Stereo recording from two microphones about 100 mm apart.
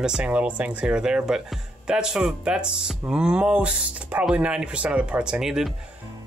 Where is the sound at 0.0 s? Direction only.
10° right (ahead or behind).